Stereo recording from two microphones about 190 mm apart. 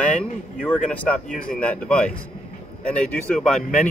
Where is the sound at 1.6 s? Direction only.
5° left (ahead or behind).